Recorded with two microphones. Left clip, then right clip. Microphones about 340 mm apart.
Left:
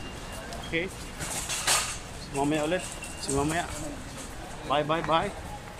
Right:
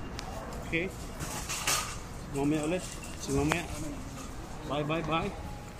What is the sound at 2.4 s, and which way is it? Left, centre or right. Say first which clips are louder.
Speech: left 4 dB; left.